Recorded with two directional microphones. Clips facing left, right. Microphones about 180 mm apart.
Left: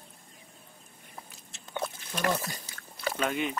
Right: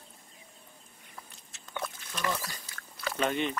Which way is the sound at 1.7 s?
30° left (ahead or behind).